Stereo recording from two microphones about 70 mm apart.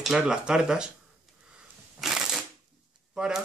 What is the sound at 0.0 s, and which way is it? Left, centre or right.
Speech, centre.